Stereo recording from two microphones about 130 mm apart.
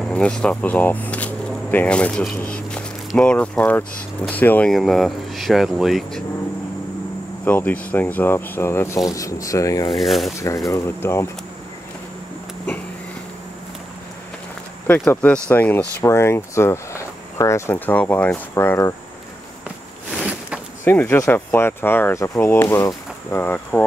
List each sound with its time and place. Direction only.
0.0 s speech: 5° left (ahead or behind)
7.4 s speech: 10° left (ahead or behind)
9.8 s speech: centre (ahead or behind)
10.7 s speech: 20° left (ahead or behind)
14.9 s speech: 10° left (ahead or behind)
20.2 s a sound: 10° right (ahead or behind)
20.8 s speech: 15° left (ahead or behind)